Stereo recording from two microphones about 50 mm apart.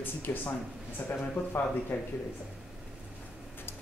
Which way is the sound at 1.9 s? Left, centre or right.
Left.